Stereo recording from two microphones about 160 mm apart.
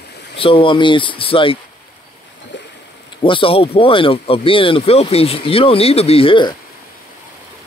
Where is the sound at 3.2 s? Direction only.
35° left (ahead or behind).